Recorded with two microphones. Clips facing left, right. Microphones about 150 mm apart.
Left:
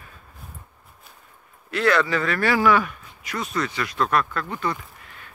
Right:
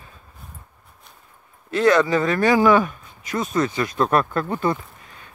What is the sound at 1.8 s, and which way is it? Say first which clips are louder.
Speech: right 4 dB; 20° right (ahead or behind).